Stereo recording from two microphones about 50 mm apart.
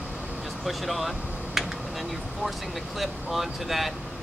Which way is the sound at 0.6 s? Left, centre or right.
Centre.